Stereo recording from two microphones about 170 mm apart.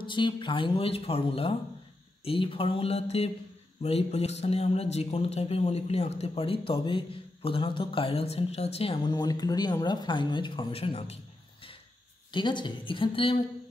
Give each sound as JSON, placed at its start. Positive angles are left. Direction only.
{"t": 0.0, "sound": "speech", "side_deg": 30}
{"t": 12.3, "sound": "a woman's voice", "side_deg": 30}